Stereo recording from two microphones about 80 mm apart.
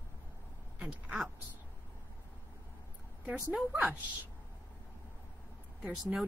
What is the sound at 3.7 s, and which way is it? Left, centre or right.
Speech, right.